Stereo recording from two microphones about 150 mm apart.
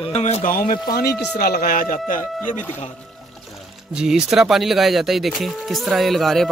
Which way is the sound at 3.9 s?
5° right (ahead or behind).